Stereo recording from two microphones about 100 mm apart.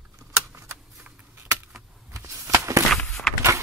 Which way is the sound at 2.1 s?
30° right (ahead or behind).